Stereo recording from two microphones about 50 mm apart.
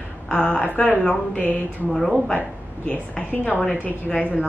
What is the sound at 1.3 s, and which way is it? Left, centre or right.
Speech, left.